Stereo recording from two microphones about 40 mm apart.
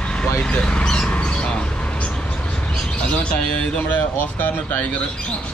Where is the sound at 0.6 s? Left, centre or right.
Left.